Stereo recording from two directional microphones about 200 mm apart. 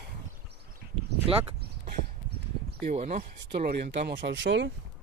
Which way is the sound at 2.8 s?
35° right (ahead or behind).